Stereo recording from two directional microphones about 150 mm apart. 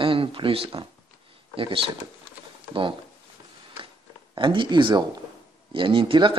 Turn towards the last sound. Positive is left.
turn(degrees=-35)  # may be behind; listen again after turning